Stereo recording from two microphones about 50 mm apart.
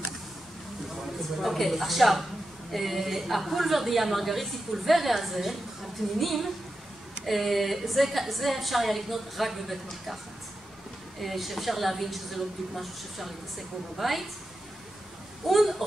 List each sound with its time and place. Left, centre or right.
1.4 s a woman's voice: centre
11.1 s a woman's voice: centre
15.4 s a woman's voice: centre